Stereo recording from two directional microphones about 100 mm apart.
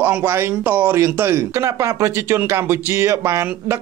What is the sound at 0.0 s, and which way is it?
Speech, 20° right (ahead or behind).